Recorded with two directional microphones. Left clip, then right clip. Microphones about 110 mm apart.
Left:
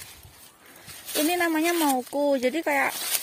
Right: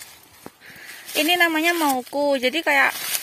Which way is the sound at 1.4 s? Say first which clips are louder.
Right 5 dB; 10° right (ahead or behind).